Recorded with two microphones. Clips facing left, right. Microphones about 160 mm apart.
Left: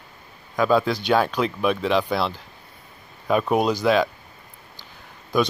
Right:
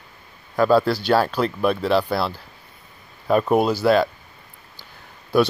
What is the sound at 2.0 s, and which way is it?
Speech, 10° right (ahead or behind).